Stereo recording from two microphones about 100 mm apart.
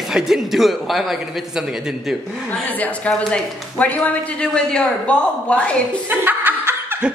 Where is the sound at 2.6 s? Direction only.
15° left (ahead or behind).